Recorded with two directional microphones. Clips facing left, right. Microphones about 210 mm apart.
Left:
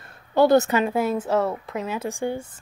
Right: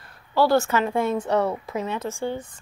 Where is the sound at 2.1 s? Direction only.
15° left (ahead or behind).